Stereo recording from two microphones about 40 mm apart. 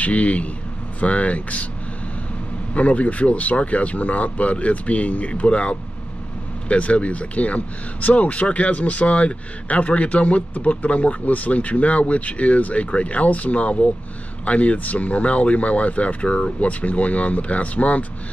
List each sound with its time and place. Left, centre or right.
0.0 s speech: left
2.7 s speech: left
16.6 s speech: left